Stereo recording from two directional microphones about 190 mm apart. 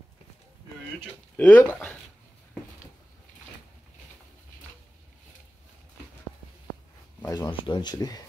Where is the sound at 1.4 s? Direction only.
10° left (ahead or behind).